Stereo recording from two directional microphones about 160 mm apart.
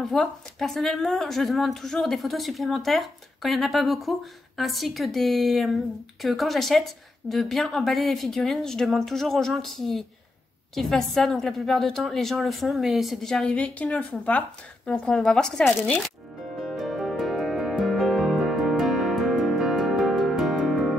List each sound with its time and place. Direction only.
0.0 s a woman's voice: centre (ahead or behind)
16.6 s music: centre (ahead or behind)